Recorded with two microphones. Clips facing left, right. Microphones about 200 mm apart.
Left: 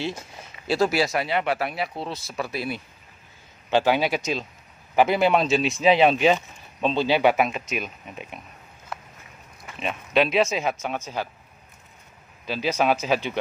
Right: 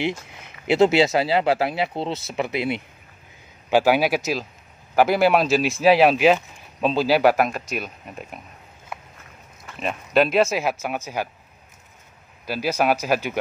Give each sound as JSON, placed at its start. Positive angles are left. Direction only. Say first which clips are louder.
{"t": 0.3, "sound": "speech", "louder": "right 4 dB", "side_deg": -20}
{"t": 3.7, "sound": "speech", "louder": "right 3 dB", "side_deg": -10}
{"t": 9.7, "sound": "speech", "louder": "right 2 dB", "side_deg": 0}
{"t": 12.4, "sound": "speech", "louder": "right 1 dB", "side_deg": -5}